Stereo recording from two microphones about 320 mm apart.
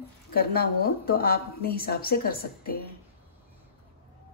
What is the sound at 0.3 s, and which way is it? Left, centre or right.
A woman's voice, left.